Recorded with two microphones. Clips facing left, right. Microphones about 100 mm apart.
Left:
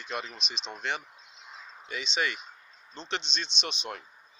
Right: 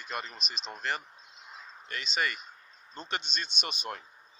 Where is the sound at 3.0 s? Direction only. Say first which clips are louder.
Left 1 dB; 5° right (ahead or behind).